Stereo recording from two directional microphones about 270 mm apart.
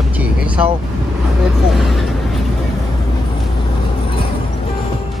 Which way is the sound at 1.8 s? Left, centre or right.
Centre.